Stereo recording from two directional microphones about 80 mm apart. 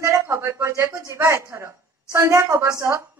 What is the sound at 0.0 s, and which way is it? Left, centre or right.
A woman's voice, right.